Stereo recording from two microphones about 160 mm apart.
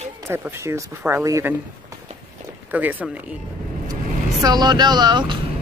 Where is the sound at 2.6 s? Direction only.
10° right (ahead or behind).